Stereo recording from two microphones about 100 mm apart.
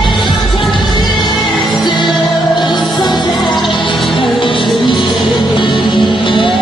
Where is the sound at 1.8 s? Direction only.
50° left (ahead or behind).